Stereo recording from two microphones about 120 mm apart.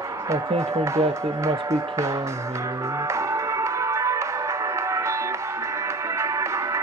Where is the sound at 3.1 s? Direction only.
25° right (ahead or behind).